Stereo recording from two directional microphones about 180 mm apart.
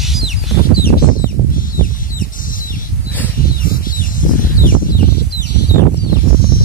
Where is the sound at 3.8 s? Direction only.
50° left (ahead or behind).